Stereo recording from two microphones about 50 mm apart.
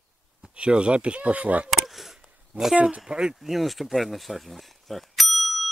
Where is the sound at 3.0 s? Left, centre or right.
Centre.